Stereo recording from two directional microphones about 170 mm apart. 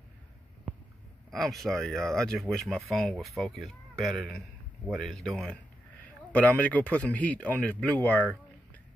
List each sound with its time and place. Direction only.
1.3 s speech: centre (ahead or behind)